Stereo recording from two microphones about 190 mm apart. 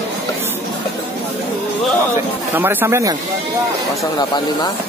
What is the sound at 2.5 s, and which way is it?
Speech, 10° right (ahead or behind).